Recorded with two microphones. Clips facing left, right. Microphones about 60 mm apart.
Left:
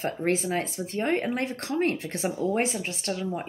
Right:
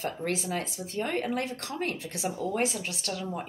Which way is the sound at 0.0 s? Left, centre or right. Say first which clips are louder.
Left 5 dB; left.